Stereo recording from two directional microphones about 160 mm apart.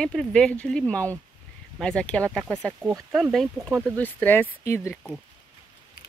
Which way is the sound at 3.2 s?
Centre (ahead or behind).